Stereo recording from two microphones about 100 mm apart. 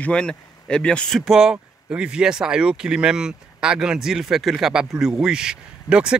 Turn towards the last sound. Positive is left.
turn(degrees=-10)  # may be behind; listen again after turning